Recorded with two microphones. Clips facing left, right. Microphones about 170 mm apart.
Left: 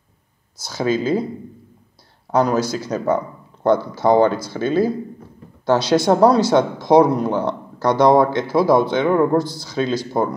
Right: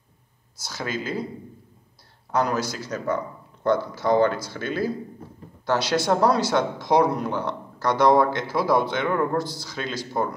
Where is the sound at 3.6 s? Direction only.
25° left (ahead or behind).